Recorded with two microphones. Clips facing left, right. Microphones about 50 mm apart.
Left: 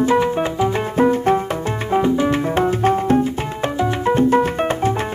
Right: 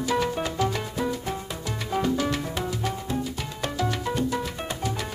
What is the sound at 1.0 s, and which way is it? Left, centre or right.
Music, left.